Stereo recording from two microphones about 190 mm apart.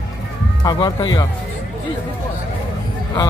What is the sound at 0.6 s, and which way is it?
Speech, 20° left (ahead or behind).